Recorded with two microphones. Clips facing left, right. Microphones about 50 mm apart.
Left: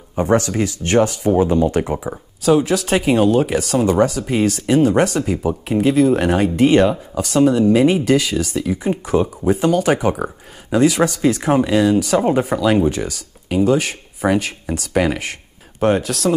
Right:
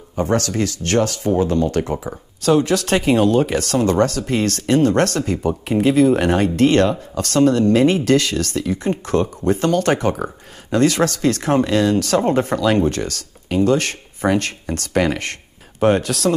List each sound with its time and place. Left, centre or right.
0.1 s speech: centre